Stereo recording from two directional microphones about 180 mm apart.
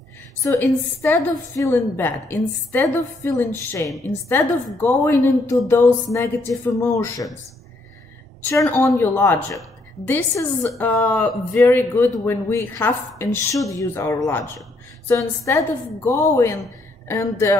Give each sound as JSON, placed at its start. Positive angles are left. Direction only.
{"t": 0.4, "sound": "speech", "side_deg": 15}
{"t": 8.4, "sound": "speech", "side_deg": 10}